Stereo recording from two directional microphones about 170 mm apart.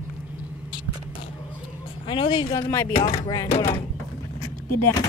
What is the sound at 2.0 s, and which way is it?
Speech, 30° left (ahead or behind).